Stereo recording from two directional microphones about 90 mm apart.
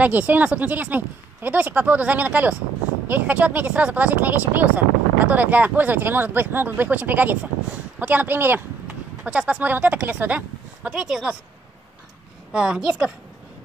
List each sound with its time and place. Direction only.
0.0 s speech: 20° right (ahead or behind)
9.2 s speech: 10° right (ahead or behind)
11.0 s speech: 5° right (ahead or behind)
12.5 s speech: 10° right (ahead or behind)